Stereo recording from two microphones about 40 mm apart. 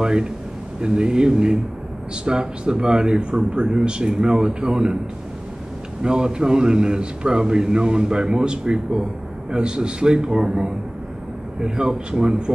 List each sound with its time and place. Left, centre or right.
0.0 s a man's voice: centre
6.0 s a man's voice: centre